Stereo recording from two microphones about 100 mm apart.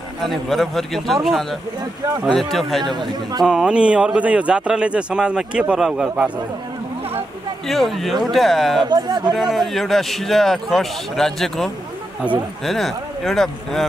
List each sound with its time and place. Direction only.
0.2 s speech: centre (ahead or behind)
3.0 s speech: 40° right (ahead or behind)
3.4 s a man's voice: 10° right (ahead or behind)
7.6 s speech: centre (ahead or behind)
8.8 s speech: 45° right (ahead or behind)
9.3 s speech: centre (ahead or behind)